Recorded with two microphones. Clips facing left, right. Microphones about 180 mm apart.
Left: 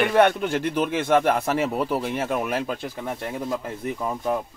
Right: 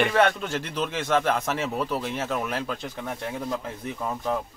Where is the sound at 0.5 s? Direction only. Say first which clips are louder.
Left 6 dB; 55° left (ahead or behind).